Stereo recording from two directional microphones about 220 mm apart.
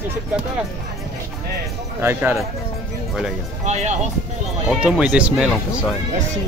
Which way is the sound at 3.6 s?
30° right (ahead or behind).